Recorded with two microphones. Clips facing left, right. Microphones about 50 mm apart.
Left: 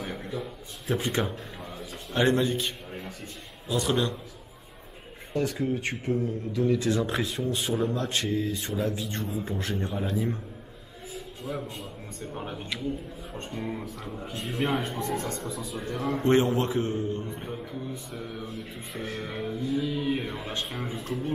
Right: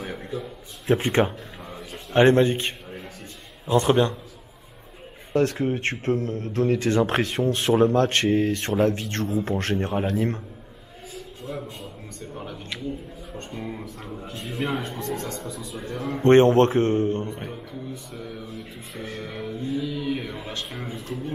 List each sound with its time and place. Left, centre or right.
0.0 s a sound: centre
0.8 s speech: right
5.3 s speech: right
9.0 s speech: right
11.1 s a man's voice: centre
13.5 s speech: centre
15.3 s speech: centre
16.3 s speech: right
18.5 s speech: centre
19.9 s speech: centre